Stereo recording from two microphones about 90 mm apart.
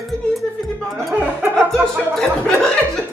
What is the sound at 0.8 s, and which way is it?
Music, centre (ahead or behind).